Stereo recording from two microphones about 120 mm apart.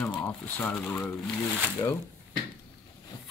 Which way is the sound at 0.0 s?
15° left (ahead or behind).